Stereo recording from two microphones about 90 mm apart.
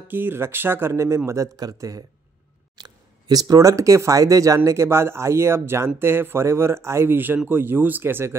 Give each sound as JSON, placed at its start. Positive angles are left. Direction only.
{"t": 0.1, "sound": "speech", "side_deg": -25}
{"t": 4.6, "sound": "speech", "side_deg": -30}